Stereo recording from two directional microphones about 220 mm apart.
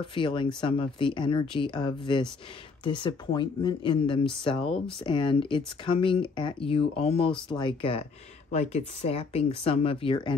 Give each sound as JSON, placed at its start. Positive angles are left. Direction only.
{"t": 0.1, "sound": "speech", "side_deg": 20}